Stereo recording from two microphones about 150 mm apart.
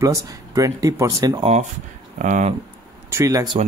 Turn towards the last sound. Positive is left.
turn(degrees=-20)  # may be behind; listen again after turning